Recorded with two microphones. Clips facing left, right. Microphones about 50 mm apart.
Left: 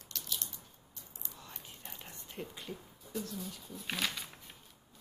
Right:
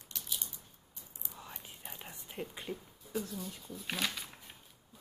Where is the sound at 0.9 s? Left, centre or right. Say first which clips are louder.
Right 2 dB; centre.